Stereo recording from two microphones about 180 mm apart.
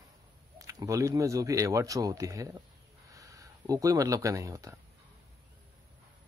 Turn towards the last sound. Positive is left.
turn(degrees=-20)  # may be behind; listen again after turning